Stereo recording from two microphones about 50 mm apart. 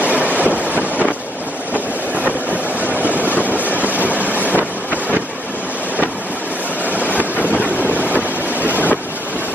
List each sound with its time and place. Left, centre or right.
0.0 s train: right
0.4 s vehicle: right
1.7 s train: right
2.8 s vehicle: right
7.2 s boat: right